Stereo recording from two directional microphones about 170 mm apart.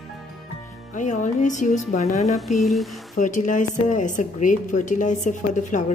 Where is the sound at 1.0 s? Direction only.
45° left (ahead or behind).